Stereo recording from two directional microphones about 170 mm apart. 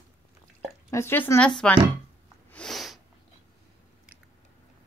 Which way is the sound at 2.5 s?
5° left (ahead or behind).